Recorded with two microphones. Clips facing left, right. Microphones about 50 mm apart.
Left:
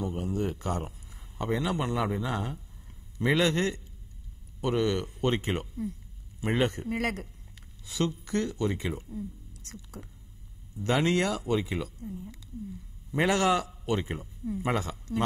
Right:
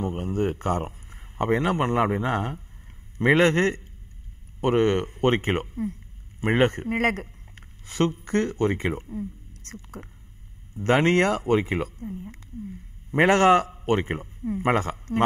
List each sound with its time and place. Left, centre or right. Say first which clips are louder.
0.0 s a man's voice: right 5 dB; right